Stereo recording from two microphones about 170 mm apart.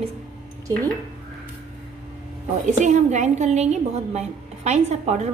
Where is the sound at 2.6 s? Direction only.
45° right (ahead or behind).